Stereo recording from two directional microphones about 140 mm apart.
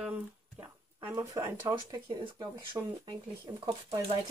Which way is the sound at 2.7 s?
35° right (ahead or behind).